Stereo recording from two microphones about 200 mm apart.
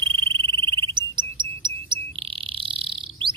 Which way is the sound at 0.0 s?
25° right (ahead or behind).